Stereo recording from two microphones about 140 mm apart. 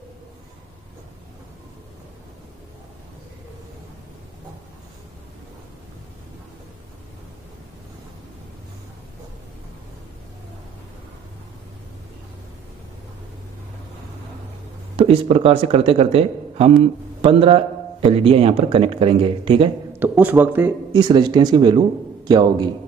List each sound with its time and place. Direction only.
15.0 s speech: 45° right (ahead or behind)
19.9 s speech: 10° right (ahead or behind)
20.9 s a man's voice: 30° right (ahead or behind)